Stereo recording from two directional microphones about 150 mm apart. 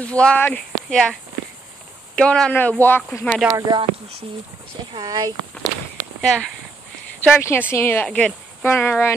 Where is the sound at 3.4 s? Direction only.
25° right (ahead or behind).